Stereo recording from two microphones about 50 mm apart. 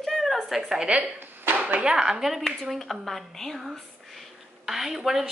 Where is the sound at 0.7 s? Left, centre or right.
Right; by 3.6 s centre.